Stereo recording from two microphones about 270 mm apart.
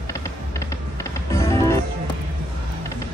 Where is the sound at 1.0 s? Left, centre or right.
Centre.